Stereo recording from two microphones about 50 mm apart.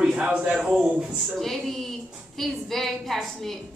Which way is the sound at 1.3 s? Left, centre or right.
Centre.